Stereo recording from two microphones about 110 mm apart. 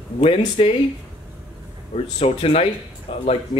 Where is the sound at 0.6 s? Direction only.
60° left (ahead or behind).